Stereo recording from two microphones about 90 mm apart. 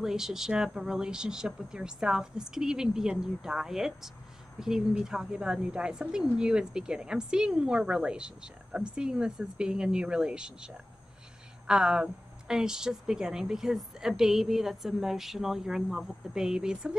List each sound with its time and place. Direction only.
0.0 s speech: 5° right (ahead or behind)